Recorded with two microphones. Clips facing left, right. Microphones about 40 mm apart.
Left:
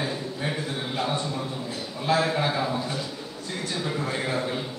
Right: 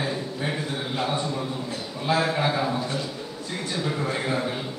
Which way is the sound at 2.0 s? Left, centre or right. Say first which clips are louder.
Even; centre.